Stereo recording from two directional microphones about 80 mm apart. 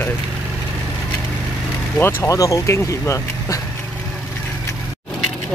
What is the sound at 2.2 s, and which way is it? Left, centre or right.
Speech, left.